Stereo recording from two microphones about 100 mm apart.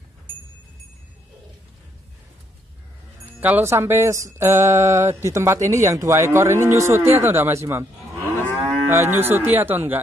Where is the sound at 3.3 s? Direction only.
20° right (ahead or behind).